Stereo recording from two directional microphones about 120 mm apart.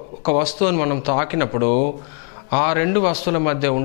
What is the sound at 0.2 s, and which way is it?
Speech, 5° left (ahead or behind).